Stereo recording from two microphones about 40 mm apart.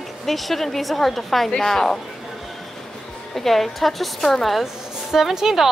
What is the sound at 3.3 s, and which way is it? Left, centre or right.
A woman's voice, centre.